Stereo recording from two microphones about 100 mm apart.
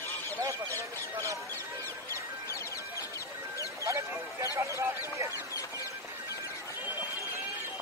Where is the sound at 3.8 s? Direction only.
30° right (ahead or behind).